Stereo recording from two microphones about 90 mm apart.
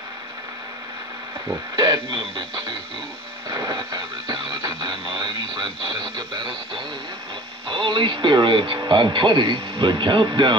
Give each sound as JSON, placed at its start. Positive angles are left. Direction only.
{"t": 1.8, "sound": "speech", "side_deg": -65}
{"t": 3.4, "sound": "a sound", "side_deg": -55}
{"t": 4.6, "sound": "radio", "side_deg": -65}
{"t": 6.1, "sound": "speech", "side_deg": -70}